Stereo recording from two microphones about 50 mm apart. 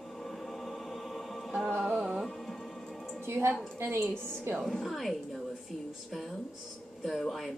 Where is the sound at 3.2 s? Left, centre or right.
Right.